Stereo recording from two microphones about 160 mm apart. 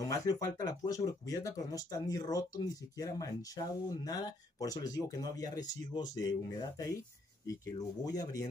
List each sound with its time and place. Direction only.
0.0 s speech: 25° left (ahead or behind)